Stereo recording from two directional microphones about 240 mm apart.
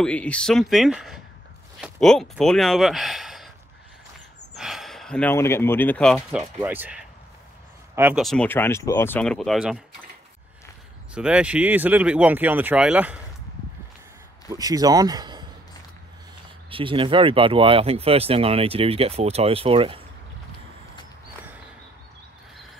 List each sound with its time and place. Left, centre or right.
0.0 s speech: centre
4.6 s speech: centre
11.1 s speech: centre
14.5 s speech: centre
16.7 s speech: right